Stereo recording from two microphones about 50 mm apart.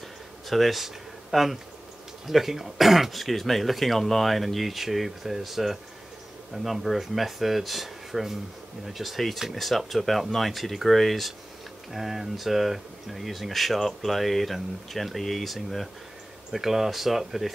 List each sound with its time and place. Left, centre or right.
0.5 s speech: centre